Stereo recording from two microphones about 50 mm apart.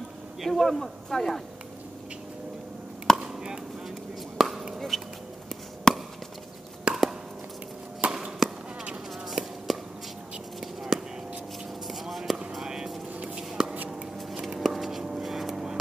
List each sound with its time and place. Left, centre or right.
0.4 s speech: centre
3.1 s chop: centre
4.4 s chop: centre
4.7 s a sound: centre
5.9 s chop: centre
6.9 s chopping: centre
8.0 s arrow: right
9.3 s a sound: centre
10.9 s a sound: centre
11.9 s basketball bounce: centre
12.6 s vehicle: centre
13.4 s a sound: centre